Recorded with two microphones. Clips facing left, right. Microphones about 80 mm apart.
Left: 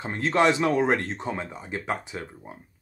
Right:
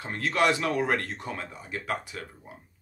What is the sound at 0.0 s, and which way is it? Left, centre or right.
A man's voice, left.